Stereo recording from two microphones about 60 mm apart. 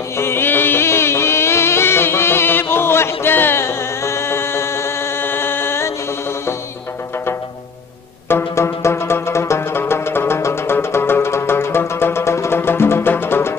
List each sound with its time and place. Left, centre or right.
0.2 s music: left
8.3 s music: left